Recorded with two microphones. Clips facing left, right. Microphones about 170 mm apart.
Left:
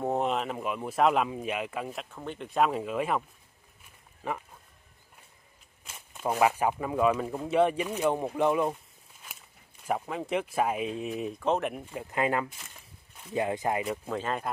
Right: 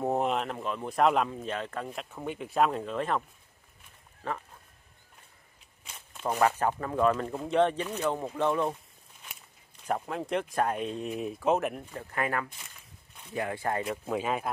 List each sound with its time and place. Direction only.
0.0 s speech: centre (ahead or behind)
2.1 s speech: 5° right (ahead or behind)
5.9 s speech: 5° left (ahead or behind)
9.8 s speech: 5° left (ahead or behind)
11.9 s speech: 15° left (ahead or behind)
14.0 s speech: 10° right (ahead or behind)